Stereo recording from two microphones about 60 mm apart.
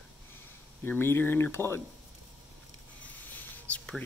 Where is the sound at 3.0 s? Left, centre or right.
Left.